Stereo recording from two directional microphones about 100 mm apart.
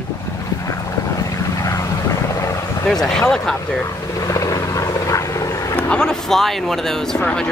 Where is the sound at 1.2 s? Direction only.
35° left (ahead or behind).